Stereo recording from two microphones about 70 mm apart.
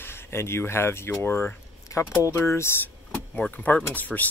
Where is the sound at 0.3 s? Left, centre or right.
Left.